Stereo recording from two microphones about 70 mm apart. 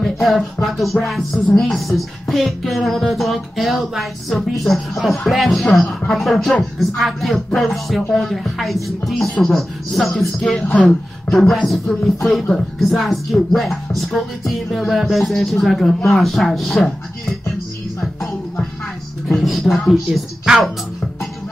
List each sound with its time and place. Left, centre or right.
0.0 s music: centre
10.4 s a man's voice: centre
12.2 s music: centre